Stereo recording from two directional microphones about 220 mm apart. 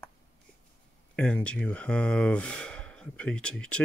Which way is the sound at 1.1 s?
5° left (ahead or behind).